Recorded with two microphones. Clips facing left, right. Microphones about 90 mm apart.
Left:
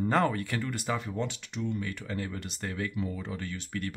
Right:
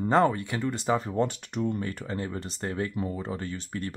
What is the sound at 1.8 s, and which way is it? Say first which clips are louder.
Speech: right 3 dB; 30° right (ahead or behind).